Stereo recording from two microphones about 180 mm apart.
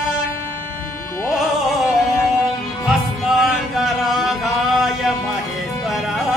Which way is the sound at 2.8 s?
Centre (ahead or behind).